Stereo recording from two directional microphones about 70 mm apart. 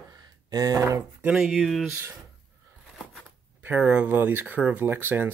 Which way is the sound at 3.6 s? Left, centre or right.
Right.